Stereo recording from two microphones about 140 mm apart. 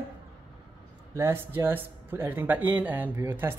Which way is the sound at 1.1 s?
20° right (ahead or behind).